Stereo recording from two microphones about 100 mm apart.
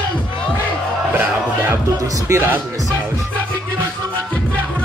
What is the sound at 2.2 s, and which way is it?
Speech, 25° right (ahead or behind).